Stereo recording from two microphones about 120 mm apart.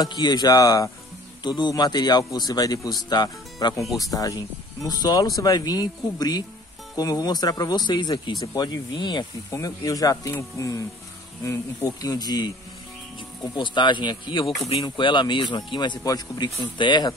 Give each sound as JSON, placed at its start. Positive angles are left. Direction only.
{"t": 0.0, "sound": "speech", "side_deg": 35}
{"t": 12.0, "sound": "speech", "side_deg": 30}